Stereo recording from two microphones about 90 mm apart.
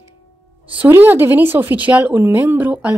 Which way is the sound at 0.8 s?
25° right (ahead or behind).